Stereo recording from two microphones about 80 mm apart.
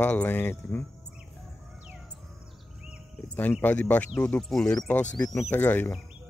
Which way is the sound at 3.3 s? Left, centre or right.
Left.